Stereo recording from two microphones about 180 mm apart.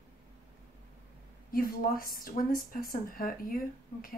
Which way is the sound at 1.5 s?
55° left (ahead or behind).